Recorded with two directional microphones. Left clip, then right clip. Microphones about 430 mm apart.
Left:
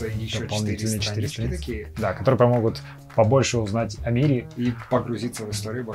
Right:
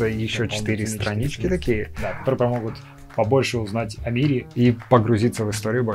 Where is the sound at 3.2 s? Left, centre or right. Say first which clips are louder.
Left 1 dB; centre.